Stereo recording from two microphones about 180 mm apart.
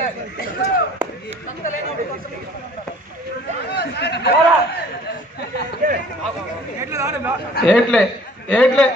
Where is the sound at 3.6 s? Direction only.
65° left (ahead or behind).